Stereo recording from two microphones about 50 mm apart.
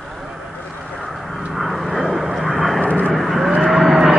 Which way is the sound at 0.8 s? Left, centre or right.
Centre.